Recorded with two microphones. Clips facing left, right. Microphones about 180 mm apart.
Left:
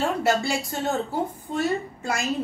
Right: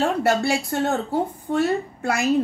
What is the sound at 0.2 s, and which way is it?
A woman's voice, 60° right (ahead or behind).